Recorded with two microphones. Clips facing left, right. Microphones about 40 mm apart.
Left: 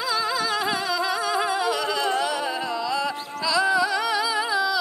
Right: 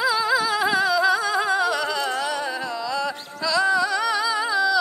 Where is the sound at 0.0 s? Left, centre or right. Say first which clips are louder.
Right 4 dB; centre.